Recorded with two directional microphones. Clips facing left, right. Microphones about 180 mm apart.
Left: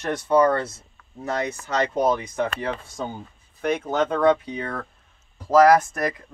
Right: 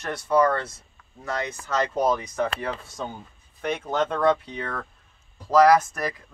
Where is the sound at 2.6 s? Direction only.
Centre (ahead or behind).